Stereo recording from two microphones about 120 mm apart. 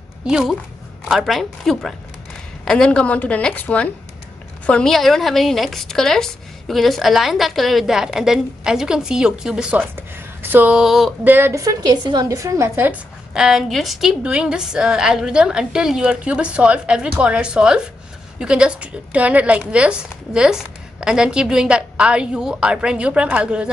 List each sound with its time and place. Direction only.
0.3 s a woman's voice: 5° right (ahead or behind)
11.2 s a woman's voice: 20° right (ahead or behind); by 12.3 s 35° right (ahead or behind)
12.3 s a woman's voice: 25° right (ahead or behind)
13.3 s speech: 5° right (ahead or behind)